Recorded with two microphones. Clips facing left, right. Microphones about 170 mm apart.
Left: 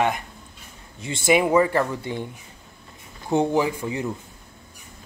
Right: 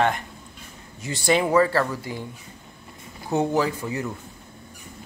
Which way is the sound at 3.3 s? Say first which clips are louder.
Left 2 dB; 15° left (ahead or behind).